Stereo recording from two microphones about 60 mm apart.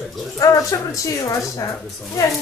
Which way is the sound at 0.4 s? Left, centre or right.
Left.